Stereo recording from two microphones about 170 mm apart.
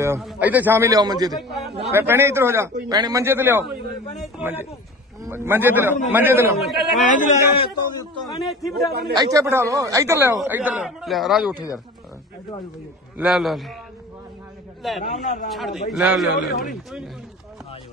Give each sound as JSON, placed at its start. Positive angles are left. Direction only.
{"t": 0.2, "sound": "a man's voice", "side_deg": -5}
{"t": 1.3, "sound": "a man's voice", "side_deg": 0}
{"t": 1.9, "sound": "a man's voice", "side_deg": -15}
{"t": 6.6, "sound": "a man's voice", "side_deg": 0}
{"t": 7.1, "sound": "a man's voice", "side_deg": 50}
{"t": 8.2, "sound": "a man's voice", "side_deg": 0}
{"t": 9.1, "sound": "a man's voice", "side_deg": -20}
{"t": 13.2, "sound": "a man's voice", "side_deg": 0}
{"t": 14.8, "sound": "a man's voice", "side_deg": 0}